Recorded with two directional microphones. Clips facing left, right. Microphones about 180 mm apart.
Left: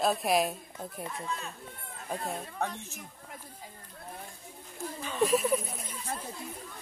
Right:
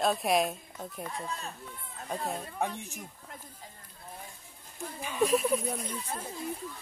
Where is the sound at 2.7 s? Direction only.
15° right (ahead or behind).